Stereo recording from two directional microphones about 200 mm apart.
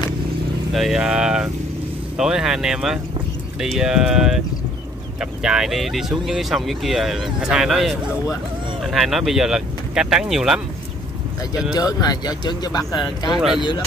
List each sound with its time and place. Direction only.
0.7 s speech: centre (ahead or behind)
11.7 s speech: 20° left (ahead or behind)